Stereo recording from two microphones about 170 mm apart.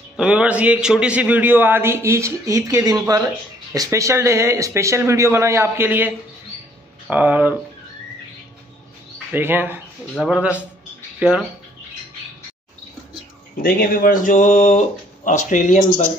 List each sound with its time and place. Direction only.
0.2 s a man's voice: 5° right (ahead or behind)
9.3 s a man's voice: 10° right (ahead or behind)
13.6 s speech: 60° left (ahead or behind)